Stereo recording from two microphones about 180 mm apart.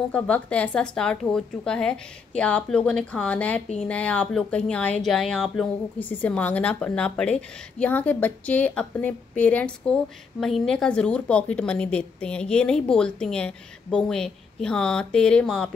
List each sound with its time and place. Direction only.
0.1 s a woman's voice: 5° left (ahead or behind)